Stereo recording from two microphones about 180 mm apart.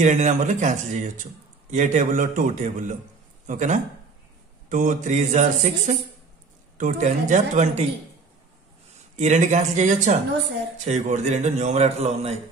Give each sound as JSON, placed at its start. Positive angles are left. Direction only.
{"t": 0.0, "sound": "a man's voice", "side_deg": -40}
{"t": 9.1, "sound": "a man's voice", "side_deg": -40}